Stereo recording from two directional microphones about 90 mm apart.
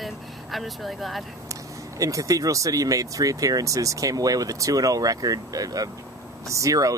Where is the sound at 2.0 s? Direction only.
40° right (ahead or behind).